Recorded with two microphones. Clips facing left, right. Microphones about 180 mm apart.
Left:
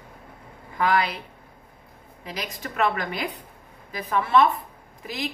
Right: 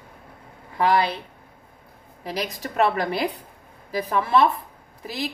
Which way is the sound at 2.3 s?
35° right (ahead or behind).